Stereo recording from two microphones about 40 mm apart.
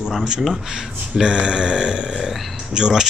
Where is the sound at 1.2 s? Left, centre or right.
Right.